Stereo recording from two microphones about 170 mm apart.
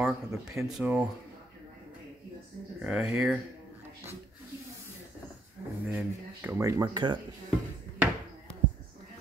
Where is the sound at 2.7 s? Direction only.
5° right (ahead or behind).